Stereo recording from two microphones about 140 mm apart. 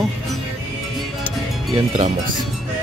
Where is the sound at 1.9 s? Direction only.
55° right (ahead or behind).